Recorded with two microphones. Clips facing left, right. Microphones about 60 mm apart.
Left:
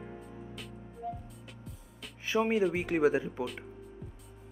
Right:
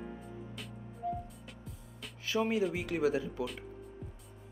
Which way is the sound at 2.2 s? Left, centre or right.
Left.